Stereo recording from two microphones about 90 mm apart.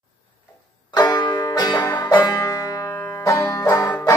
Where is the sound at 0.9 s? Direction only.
45° left (ahead or behind).